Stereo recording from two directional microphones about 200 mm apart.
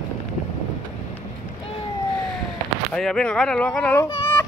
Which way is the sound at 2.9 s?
5° left (ahead or behind).